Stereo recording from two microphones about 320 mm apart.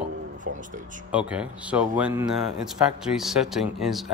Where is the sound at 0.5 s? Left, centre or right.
Right.